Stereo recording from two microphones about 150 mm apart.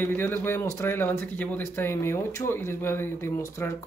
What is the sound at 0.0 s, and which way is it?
A man's voice, 15° left (ahead or behind).